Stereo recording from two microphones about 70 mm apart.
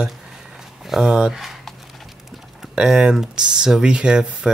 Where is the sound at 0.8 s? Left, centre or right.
Centre.